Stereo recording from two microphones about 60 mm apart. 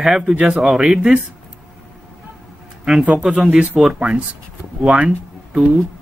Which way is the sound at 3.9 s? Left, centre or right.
Centre.